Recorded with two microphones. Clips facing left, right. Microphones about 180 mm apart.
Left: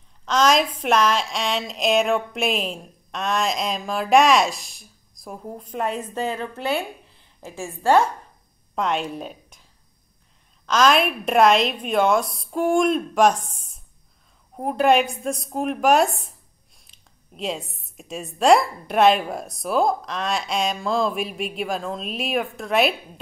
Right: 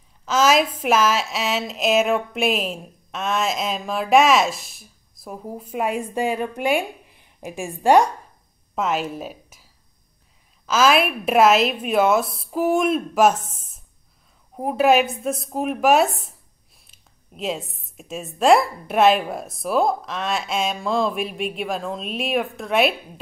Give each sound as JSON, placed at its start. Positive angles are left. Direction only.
{"t": 0.2, "sound": "speech", "side_deg": -5}
{"t": 8.7, "sound": "a woman's voice", "side_deg": -5}
{"t": 10.7, "sound": "speech", "side_deg": -5}